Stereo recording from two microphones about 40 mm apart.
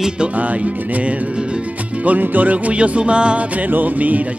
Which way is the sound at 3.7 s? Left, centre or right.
Right.